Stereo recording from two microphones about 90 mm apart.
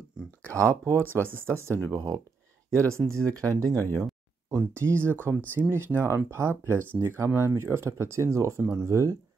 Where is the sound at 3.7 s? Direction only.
20° left (ahead or behind).